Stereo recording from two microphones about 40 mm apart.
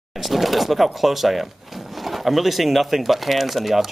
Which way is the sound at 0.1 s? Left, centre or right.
Centre.